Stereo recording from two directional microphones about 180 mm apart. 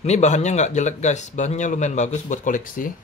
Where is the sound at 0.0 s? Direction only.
40° left (ahead or behind).